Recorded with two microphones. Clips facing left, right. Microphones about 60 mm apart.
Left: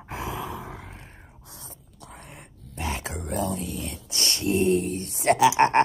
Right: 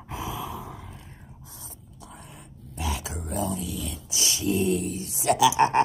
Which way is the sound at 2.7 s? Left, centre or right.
Left.